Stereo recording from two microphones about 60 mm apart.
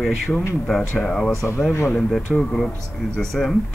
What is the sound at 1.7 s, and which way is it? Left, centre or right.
Speech, left.